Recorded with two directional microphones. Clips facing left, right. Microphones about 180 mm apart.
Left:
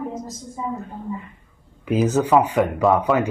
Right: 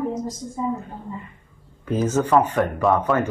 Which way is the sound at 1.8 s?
10° left (ahead or behind).